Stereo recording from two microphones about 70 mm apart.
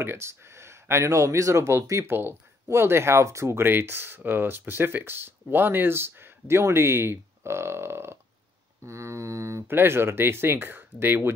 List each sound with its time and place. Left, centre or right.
0.0 s speech: right